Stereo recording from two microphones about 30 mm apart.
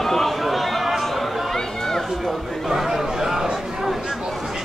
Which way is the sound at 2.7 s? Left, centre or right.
Centre.